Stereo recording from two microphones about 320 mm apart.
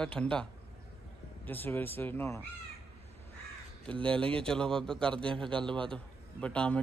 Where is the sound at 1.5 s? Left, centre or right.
Centre.